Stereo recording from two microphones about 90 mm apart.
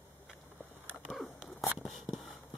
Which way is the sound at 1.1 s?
Centre (ahead or behind).